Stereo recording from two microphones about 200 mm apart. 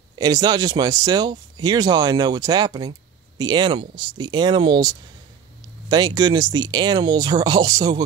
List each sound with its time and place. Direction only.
0.2 s speech: 20° right (ahead or behind)